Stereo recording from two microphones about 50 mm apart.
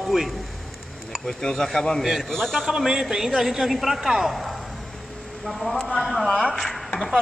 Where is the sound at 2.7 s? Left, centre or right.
Centre.